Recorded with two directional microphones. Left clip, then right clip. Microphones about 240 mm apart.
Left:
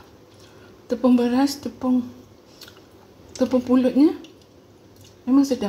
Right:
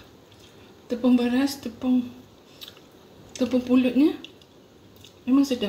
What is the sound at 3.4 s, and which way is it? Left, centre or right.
Speech, left.